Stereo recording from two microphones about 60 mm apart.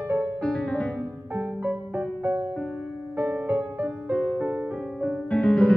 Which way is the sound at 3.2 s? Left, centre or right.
Right.